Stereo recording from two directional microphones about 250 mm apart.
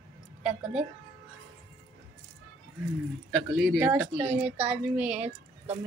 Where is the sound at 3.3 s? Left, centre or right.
Centre.